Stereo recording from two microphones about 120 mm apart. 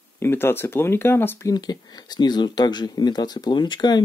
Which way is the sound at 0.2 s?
20° left (ahead or behind).